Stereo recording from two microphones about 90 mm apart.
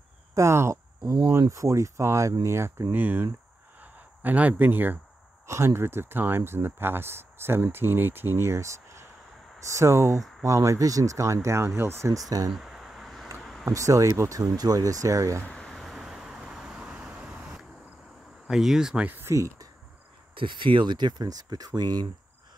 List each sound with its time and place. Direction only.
0.3 s speech: 30° right (ahead or behind)
3.8 s a sound: 20° right (ahead or behind)
5.5 s speech: 30° right (ahead or behind)
12.4 s a sound: 5° right (ahead or behind)
13.7 s speech: 40° right (ahead or behind)
15.4 s vehicle: 5° left (ahead or behind); by 17.6 s 10° right (ahead or behind)
18.5 s speech: 5° right (ahead or behind)
19.0 s speech: 20° right (ahead or behind)
19.3 s speech: 35° right (ahead or behind)
20.3 s speech: 65° right (ahead or behind); by 22.0 s 50° right (ahead or behind)